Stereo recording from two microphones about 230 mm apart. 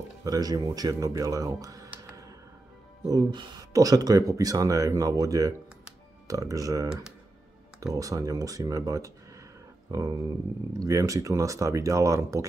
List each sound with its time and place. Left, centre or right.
0.2 s speech: centre